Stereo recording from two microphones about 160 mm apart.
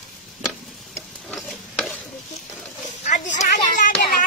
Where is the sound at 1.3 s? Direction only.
Centre (ahead or behind).